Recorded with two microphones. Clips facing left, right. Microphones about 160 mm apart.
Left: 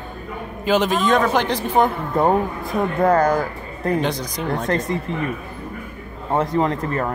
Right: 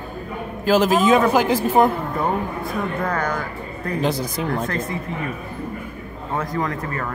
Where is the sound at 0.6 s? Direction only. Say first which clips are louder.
Right 2 dB; centre (ahead or behind).